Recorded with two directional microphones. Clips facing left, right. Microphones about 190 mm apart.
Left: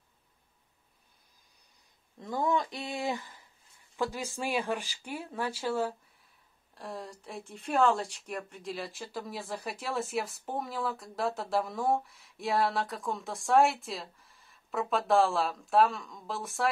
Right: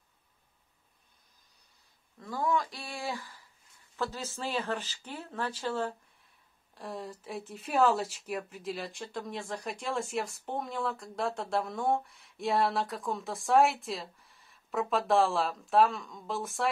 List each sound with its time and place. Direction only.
2.1 s speech: 20° left (ahead or behind); by 16.6 s centre (ahead or behind)